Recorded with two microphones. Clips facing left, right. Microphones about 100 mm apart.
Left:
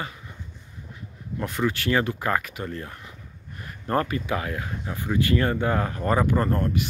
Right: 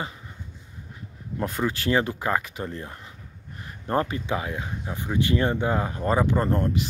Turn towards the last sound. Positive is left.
turn(degrees=-25)  # may be behind; listen again after turning